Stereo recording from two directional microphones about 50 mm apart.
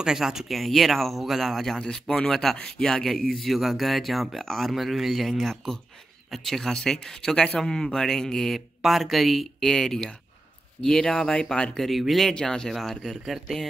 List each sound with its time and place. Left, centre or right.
0.0 s speech: centre
1.8 s speech: centre
11.0 s speech: centre
11.7 s speech: centre